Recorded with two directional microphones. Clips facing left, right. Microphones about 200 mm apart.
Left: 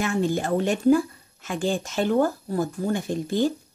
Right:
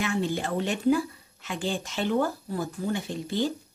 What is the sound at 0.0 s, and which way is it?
Speech, 45° left (ahead or behind).